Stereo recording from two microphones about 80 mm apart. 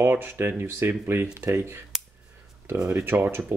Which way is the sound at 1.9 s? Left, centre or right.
Centre.